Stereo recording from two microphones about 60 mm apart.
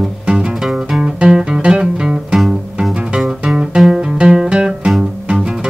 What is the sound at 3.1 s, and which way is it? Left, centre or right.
Music, centre.